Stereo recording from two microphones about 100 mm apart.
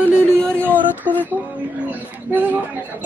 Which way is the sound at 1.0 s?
20° left (ahead or behind).